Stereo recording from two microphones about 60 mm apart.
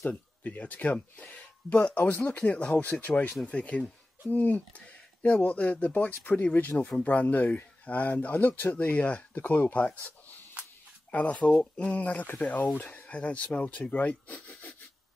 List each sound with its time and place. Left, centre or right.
0.1 s speech: left